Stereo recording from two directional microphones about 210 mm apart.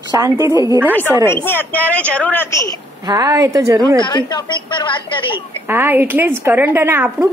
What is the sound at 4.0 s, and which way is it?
A woman's voice, 20° left (ahead or behind).